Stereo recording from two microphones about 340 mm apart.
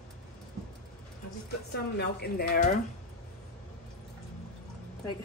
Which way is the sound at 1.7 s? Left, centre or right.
Left.